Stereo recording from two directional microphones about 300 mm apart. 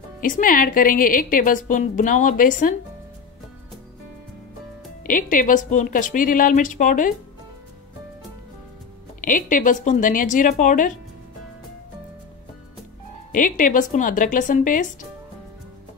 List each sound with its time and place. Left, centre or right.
0.2 s a woman's voice: left
5.0 s a woman's voice: left
9.2 s a woman's voice: left
13.3 s a woman's voice: left